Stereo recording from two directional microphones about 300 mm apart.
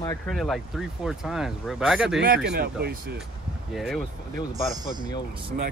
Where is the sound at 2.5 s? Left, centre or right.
Right.